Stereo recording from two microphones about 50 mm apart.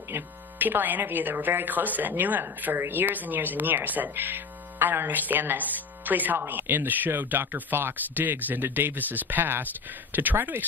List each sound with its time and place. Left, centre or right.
0.1 s speech: right